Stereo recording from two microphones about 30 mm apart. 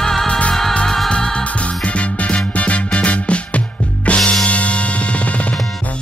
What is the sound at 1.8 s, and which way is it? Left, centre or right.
Music, left.